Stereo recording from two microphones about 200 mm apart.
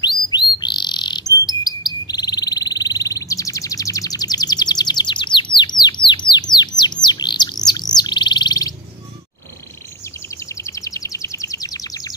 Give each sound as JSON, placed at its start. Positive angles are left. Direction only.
{"t": 0.0, "sound": "bird", "side_deg": 25}
{"t": 7.6, "sound": "chirp", "side_deg": 20}
{"t": 10.3, "sound": "a sound", "side_deg": 15}